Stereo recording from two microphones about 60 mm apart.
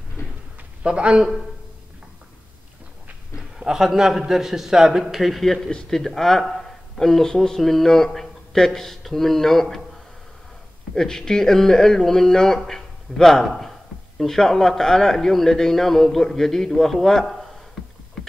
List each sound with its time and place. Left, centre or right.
0.8 s a man's voice: centre
3.3 s a man's voice: centre
11.0 s a man's voice: centre